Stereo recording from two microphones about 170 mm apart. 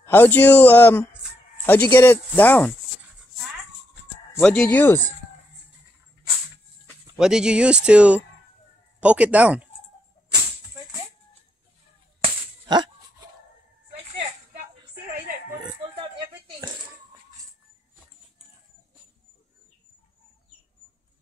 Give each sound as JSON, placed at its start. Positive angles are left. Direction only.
{"t": 0.0, "sound": "a man's voice", "side_deg": 10}
{"t": 4.4, "sound": "a man's voice", "side_deg": 5}
{"t": 7.2, "sound": "speech", "side_deg": -5}
{"t": 12.2, "sound": "a sound", "side_deg": -25}